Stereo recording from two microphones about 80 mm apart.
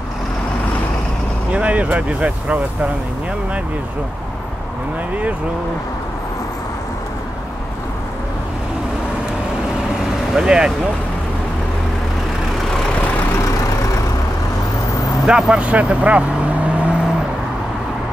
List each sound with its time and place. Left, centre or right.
1.5 s speech: centre
10.3 s speech: centre
15.2 s speech: centre